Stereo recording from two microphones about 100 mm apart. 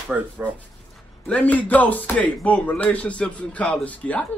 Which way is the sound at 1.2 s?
15° left (ahead or behind).